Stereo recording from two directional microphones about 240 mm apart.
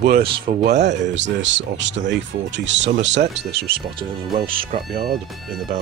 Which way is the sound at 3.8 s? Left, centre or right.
Right.